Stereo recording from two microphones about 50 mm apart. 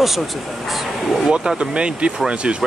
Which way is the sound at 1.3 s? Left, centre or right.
Centre.